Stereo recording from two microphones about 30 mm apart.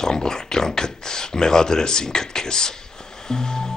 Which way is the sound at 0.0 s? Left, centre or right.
Left.